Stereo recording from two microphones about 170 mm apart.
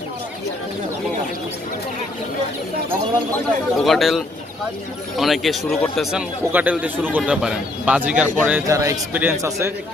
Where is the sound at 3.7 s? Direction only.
Centre (ahead or behind).